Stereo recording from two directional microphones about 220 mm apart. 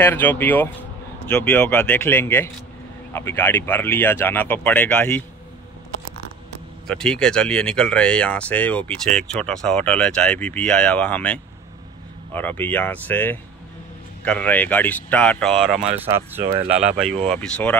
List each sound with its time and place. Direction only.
0.0 s speech: 10° left (ahead or behind)
6.9 s speech: 5° left (ahead or behind)
16.1 s speech: 10° right (ahead or behind); by 17.7 s 5° left (ahead or behind)